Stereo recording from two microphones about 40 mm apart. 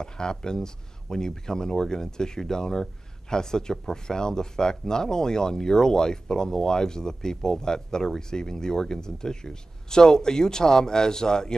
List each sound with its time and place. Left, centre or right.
0.0 s speech: centre